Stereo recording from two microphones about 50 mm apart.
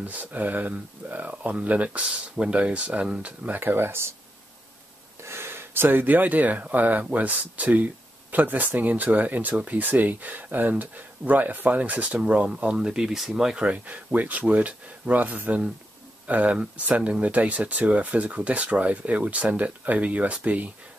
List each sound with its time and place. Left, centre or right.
0.0 s speech: right
3.5 s speech: right
5.2 s speech: right; by 13.6 s centre
13.6 s speech: right